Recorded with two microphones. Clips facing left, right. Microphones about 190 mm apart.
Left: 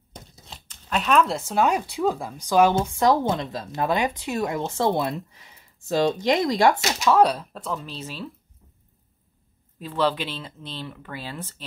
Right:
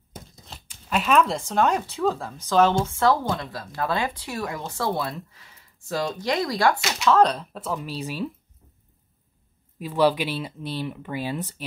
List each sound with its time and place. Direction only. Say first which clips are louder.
0.1 s tearing: right 1 dB; 5° right (ahead or behind)
1.5 s speech: even; 10° left (ahead or behind)
7.1 s speech: even; 10° left (ahead or behind)
7.7 s speech: right 3 dB; 10° right (ahead or behind)
9.8 s speech: right 3 dB; 10° right (ahead or behind)